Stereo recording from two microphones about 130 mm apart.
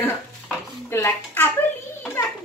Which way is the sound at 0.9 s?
20° left (ahead or behind).